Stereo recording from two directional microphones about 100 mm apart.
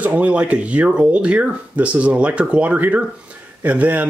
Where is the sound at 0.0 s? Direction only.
15° right (ahead or behind).